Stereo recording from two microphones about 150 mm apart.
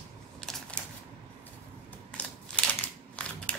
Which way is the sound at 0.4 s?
5° left (ahead or behind).